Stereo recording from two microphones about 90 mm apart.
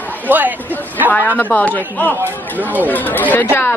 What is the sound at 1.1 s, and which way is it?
Speech, 20° left (ahead or behind).